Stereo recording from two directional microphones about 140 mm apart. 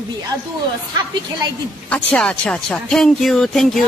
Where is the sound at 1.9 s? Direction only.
10° left (ahead or behind).